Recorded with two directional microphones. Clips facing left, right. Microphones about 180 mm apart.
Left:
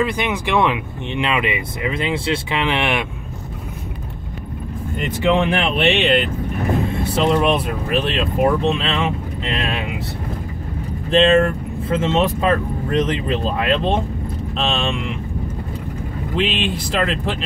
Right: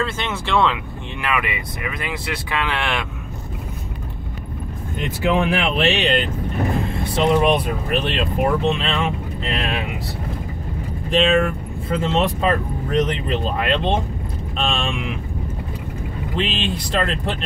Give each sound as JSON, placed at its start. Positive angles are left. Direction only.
{"t": 0.0, "sound": "speech", "side_deg": 15}
{"t": 5.5, "sound": "speech", "side_deg": 0}
{"t": 11.1, "sound": "speech", "side_deg": 0}
{"t": 16.3, "sound": "speech", "side_deg": 0}